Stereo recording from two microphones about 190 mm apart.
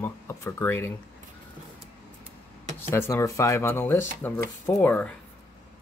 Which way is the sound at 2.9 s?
15° left (ahead or behind).